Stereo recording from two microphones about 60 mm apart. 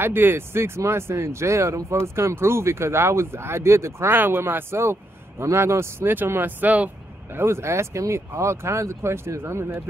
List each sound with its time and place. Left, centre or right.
0.0 s speech: right
4.1 s speech: right
6.6 s speech: right
7.3 s speech: right